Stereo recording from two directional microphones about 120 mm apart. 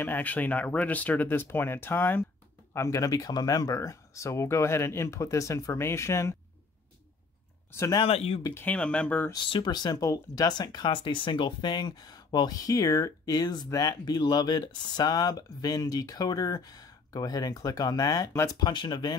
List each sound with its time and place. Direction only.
0.0 s speech: 15° left (ahead or behind)
7.7 s speech: 25° left (ahead or behind)
8.0 s speech: 55° left (ahead or behind)
8.5 s speech: 10° left (ahead or behind)
9.5 s speech: 40° left (ahead or behind)
18.6 s speech: 40° left (ahead or behind)